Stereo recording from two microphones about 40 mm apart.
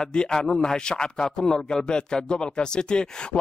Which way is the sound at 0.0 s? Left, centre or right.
Left.